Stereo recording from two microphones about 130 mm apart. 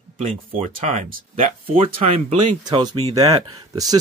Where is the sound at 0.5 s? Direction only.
60° right (ahead or behind).